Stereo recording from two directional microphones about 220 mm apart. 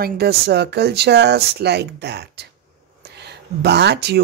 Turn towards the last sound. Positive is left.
turn(degrees=-50)  # may be behind; listen again after turning